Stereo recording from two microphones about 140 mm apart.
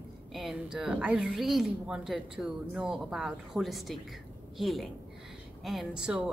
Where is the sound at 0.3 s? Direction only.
Centre (ahead or behind).